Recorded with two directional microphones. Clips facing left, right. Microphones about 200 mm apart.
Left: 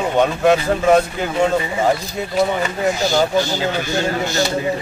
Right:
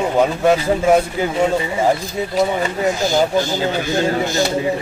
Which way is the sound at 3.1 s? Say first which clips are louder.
Even; 20° right (ahead or behind).